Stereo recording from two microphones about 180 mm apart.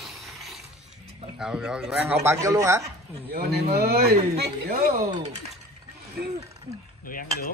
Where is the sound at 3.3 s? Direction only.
65° right (ahead or behind).